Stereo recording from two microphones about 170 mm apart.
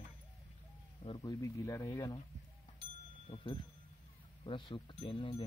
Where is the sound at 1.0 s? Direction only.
25° left (ahead or behind).